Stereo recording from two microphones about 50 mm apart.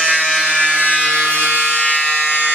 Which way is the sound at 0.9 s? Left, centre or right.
Right.